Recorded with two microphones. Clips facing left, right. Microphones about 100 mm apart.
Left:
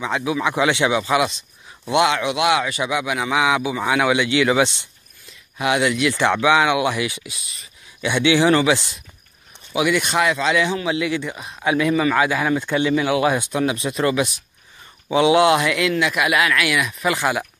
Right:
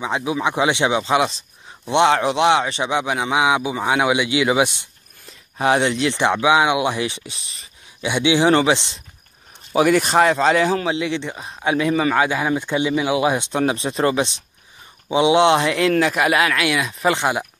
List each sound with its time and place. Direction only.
0.0 s speech: 25° right (ahead or behind)
5.2 s speech: 35° right (ahead or behind)
6.2 s speech: 15° right (ahead or behind); by 7.6 s 35° right (ahead or behind)
8.0 s speech: 15° right (ahead or behind)
8.5 s speech: 30° right (ahead or behind)
9.7 s speech: 40° right (ahead or behind)
11.0 s speech: 30° right (ahead or behind)
13.5 s speech: 35° right (ahead or behind)